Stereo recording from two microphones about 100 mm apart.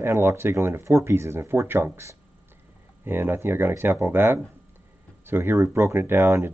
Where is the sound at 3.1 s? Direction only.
20° right (ahead or behind).